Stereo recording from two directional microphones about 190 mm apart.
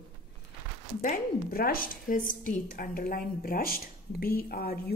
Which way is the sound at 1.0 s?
50° left (ahead or behind).